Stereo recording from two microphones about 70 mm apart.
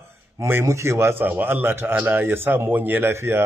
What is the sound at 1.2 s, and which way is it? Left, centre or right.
A man's voice, right.